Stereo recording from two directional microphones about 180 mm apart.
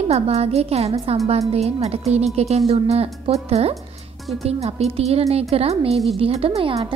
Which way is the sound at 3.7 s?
Centre (ahead or behind).